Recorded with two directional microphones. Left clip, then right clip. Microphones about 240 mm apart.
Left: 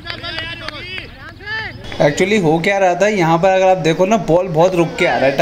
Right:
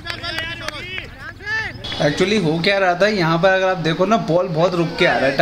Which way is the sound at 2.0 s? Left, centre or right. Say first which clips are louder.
Left 4 dB; centre.